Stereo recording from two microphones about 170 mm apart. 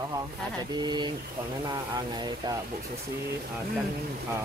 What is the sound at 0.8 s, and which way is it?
Speech, 25° right (ahead or behind).